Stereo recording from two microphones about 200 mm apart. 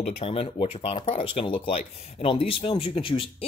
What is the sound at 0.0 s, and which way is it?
Speech, 30° left (ahead or behind).